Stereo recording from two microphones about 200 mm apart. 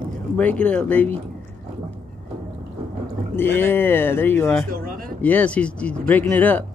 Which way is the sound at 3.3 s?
10° left (ahead or behind).